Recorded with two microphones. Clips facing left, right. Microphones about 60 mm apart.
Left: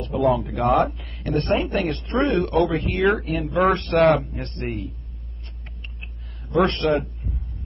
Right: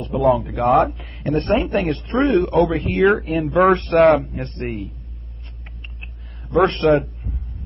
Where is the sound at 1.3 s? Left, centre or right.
Centre.